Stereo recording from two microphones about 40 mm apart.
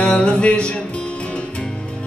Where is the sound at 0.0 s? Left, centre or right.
Left.